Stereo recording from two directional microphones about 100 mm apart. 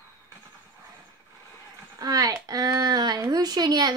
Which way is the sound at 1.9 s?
35° right (ahead or behind).